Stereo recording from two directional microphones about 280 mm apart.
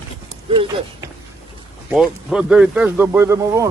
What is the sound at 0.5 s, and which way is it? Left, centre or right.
Speech, centre.